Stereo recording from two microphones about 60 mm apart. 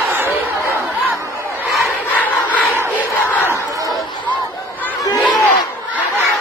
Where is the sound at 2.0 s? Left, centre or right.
Left.